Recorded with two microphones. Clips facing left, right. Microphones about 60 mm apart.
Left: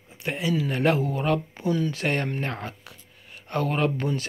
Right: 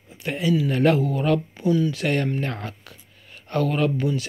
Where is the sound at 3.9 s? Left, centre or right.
Left.